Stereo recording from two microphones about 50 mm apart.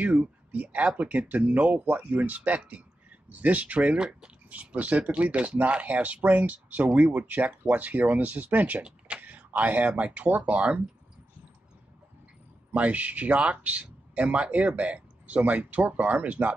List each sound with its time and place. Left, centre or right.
0.0 s speech: right
8.8 s a sound: right
9.2 s speech: right
12.7 s speech: right